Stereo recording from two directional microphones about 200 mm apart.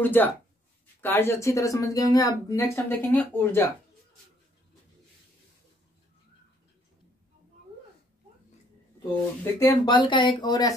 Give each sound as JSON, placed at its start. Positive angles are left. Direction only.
{"t": 0.0, "sound": "speech", "side_deg": 10}
{"t": 9.4, "sound": "speech", "side_deg": 20}